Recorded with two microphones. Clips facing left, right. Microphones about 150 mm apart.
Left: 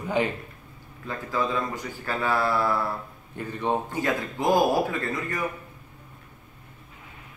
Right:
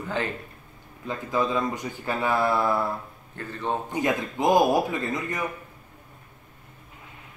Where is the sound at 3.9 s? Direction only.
20° right (ahead or behind).